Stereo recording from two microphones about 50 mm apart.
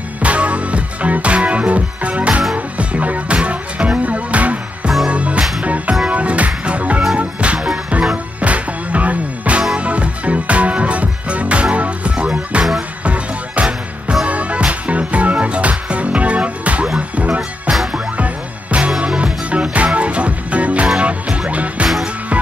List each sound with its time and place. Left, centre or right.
0.2 s music: right
18.1 s music: right